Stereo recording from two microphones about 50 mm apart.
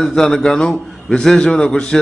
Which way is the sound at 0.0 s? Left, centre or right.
Centre.